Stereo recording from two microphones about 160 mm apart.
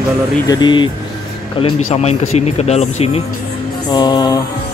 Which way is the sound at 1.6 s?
40° left (ahead or behind).